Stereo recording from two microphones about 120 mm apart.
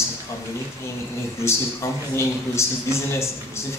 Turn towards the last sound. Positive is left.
turn(degrees=25)  # may be behind; listen again after turning